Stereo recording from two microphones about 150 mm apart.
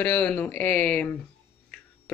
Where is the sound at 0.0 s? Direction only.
10° left (ahead or behind).